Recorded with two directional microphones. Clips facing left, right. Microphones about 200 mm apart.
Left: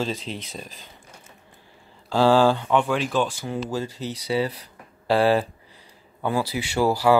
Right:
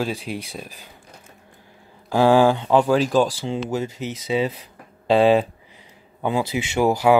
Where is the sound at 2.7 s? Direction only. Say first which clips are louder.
Right 5 dB; 35° right (ahead or behind).